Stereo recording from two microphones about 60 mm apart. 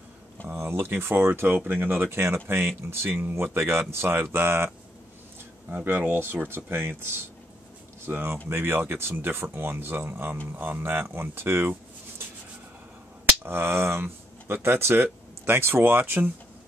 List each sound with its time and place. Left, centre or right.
0.5 s speech: right
5.7 s speech: right
13.2 s speech: right